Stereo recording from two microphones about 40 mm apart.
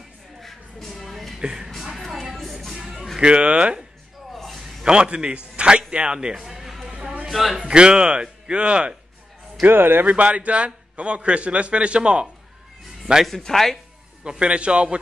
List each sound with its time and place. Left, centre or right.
0.4 s a sound: centre
1.4 s speech: centre
1.9 s music: centre
3.2 s a man's voice: right
4.5 s a sound: centre
4.8 s speech: right
6.3 s music: centre
6.9 s a sound: centre
7.2 s a man's voice: centre
7.6 s a man's voice: right
9.7 s speech: right
10.0 s a man's voice: right
13.3 s speech: centre
14.4 s a man's voice: right